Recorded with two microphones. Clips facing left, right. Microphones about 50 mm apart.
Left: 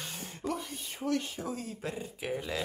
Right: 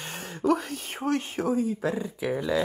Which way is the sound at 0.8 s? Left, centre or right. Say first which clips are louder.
Right 5 dB; right.